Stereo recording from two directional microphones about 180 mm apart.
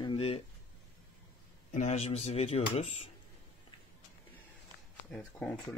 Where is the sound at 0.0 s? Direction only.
30° left (ahead or behind).